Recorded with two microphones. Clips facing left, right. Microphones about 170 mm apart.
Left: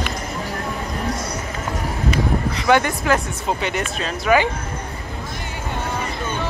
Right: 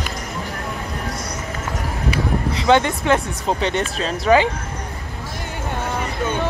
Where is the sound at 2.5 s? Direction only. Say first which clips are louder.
Right 2 dB; 20° right (ahead or behind).